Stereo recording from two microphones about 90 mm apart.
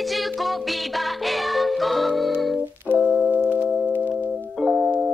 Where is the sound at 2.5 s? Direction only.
15° right (ahead or behind).